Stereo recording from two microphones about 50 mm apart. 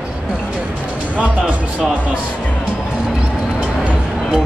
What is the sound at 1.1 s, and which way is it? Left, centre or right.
Speech, right.